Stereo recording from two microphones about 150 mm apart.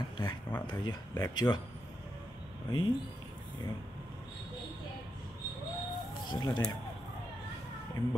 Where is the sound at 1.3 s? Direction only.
30° left (ahead or behind).